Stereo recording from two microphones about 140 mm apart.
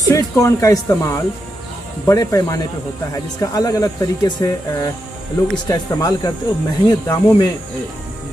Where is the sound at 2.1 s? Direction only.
25° left (ahead or behind).